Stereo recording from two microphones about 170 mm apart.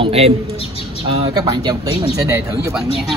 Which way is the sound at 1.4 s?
20° right (ahead or behind).